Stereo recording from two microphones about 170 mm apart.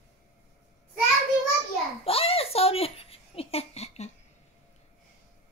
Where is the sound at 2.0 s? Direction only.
35° left (ahead or behind).